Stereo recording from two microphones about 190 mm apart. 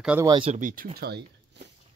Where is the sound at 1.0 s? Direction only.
60° right (ahead or behind).